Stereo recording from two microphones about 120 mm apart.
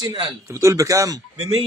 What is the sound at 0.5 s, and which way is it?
Speech, 25° right (ahead or behind).